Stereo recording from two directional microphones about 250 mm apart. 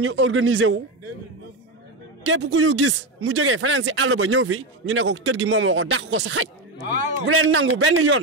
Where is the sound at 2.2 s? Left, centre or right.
Right.